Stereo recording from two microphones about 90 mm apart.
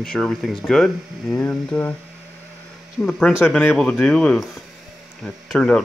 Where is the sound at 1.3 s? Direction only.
20° left (ahead or behind).